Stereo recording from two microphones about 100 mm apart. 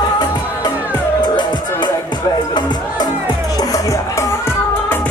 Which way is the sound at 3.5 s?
35° left (ahead or behind).